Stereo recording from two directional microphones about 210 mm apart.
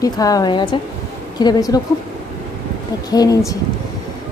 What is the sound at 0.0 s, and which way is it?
A woman's voice, 15° left (ahead or behind).